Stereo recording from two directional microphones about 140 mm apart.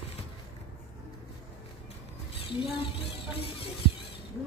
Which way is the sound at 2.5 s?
40° left (ahead or behind).